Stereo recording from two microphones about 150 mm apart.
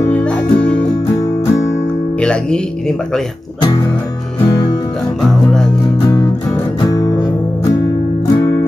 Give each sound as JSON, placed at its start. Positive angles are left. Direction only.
{"t": 0.1, "sound": "music", "side_deg": 10}
{"t": 6.8, "sound": "music", "side_deg": 25}